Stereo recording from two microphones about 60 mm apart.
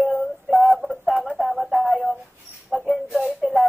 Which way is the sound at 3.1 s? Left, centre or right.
Centre.